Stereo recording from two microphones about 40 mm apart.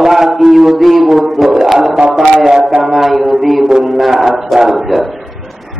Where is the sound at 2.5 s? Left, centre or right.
Right.